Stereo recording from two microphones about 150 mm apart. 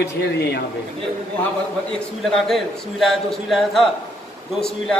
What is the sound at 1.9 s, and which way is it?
A man's voice, centre (ahead or behind).